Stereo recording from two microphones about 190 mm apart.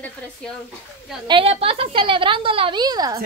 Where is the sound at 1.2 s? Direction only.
30° right (ahead or behind).